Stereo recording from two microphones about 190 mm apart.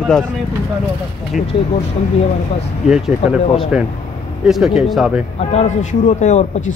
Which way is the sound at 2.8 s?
5° right (ahead or behind).